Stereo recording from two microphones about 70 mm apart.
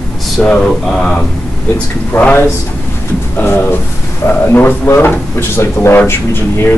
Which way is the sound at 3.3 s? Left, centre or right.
Left.